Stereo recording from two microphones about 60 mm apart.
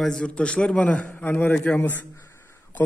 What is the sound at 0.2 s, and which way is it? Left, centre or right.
A man's voice, centre.